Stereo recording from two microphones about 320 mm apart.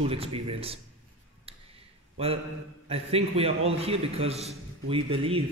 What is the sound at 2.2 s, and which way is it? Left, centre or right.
A man's voice, centre.